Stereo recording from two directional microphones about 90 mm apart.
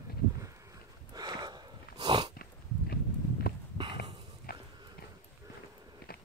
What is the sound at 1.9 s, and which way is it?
Dog, 55° right (ahead or behind).